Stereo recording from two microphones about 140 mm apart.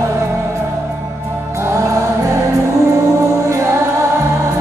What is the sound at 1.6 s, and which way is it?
Music, 20° right (ahead or behind).